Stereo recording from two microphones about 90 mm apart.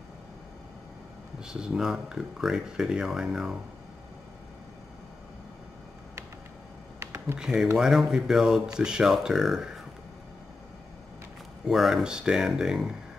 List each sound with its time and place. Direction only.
1.4 s speech: 5° right (ahead or behind)
7.0 s computer keyboard: 30° right (ahead or behind)
7.3 s speech: 5° right (ahead or behind)
11.6 s speech: 5° right (ahead or behind)